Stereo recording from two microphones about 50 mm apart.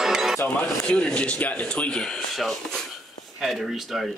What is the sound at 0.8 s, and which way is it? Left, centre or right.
Speech, centre.